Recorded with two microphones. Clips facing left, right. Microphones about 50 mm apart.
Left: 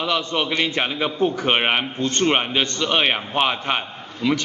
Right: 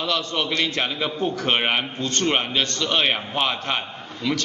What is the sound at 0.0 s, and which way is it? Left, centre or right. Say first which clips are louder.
A man's voice: left 2 dB; centre.